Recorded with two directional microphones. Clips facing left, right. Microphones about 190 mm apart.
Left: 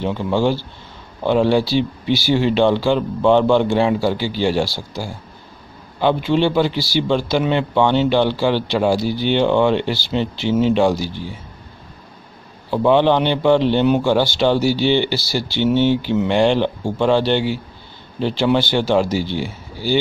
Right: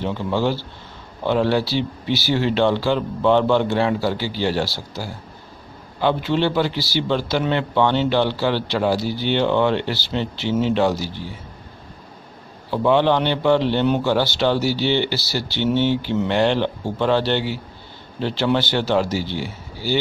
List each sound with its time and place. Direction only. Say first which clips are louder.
0.0 s a man's voice: left 3 dB; 15° left (ahead or behind)
12.7 s a man's voice: left 3 dB; 15° left (ahead or behind)